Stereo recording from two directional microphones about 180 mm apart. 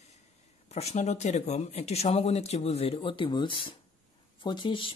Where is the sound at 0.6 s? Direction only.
35° left (ahead or behind).